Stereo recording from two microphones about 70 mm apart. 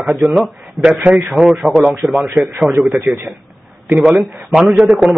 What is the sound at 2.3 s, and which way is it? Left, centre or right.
Speech, centre.